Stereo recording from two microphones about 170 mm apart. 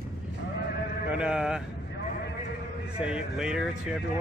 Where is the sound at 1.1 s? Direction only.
5° right (ahead or behind).